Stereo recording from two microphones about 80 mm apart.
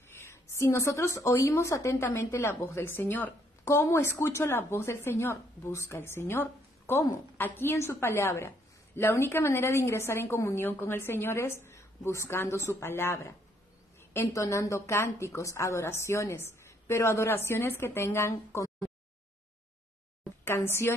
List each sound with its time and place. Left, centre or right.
0.1 s a woman's voice: left
3.6 s a woman's voice: left
14.3 s a woman's voice: left
20.4 s a woman's voice: left